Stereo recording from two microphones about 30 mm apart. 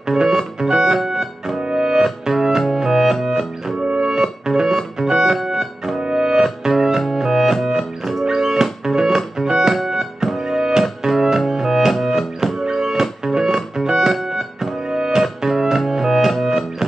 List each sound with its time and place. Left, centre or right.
0.1 s music: centre
15.5 s music: centre